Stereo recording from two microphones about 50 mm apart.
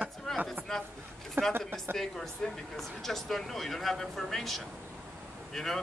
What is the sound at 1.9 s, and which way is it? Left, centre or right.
Speech, centre.